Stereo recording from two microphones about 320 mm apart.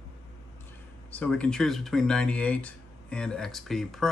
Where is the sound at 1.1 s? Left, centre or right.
Centre.